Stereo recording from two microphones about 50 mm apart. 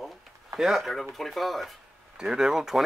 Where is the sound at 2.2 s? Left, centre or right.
Centre.